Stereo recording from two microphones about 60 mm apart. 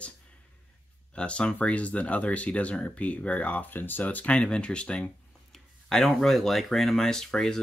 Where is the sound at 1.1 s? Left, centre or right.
Centre.